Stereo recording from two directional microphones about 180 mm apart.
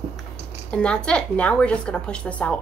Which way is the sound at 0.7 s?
5° left (ahead or behind).